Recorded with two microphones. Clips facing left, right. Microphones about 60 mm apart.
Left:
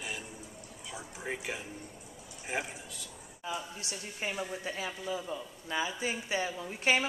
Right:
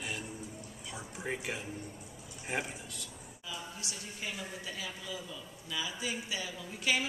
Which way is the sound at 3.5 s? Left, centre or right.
Left.